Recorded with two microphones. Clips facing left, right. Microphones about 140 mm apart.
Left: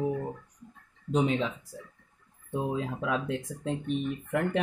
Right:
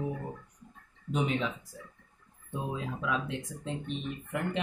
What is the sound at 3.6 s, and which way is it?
Speech, 50° left (ahead or behind).